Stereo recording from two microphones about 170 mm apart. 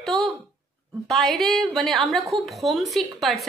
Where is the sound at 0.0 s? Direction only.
Centre (ahead or behind).